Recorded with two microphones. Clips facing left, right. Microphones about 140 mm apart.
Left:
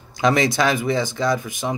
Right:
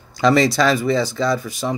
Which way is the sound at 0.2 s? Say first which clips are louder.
Right 3 dB; 15° left (ahead or behind).